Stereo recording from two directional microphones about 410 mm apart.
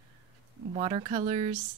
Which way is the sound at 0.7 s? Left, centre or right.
Centre.